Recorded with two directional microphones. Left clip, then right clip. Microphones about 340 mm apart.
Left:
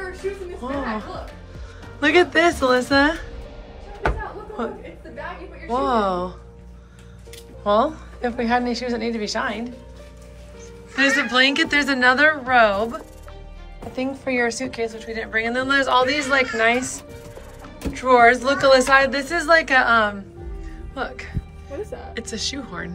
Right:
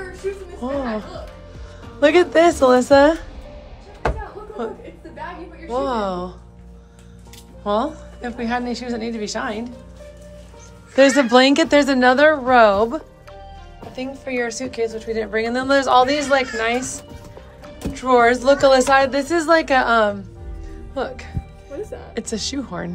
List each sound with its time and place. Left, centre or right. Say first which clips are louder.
0.6 s a woman's voice: right 4 dB; centre
4.6 s a woman's voice: right 1 dB; centre
7.6 s a woman's voice: left 2 dB; centre
11.0 s a woman's voice: right 5 dB; centre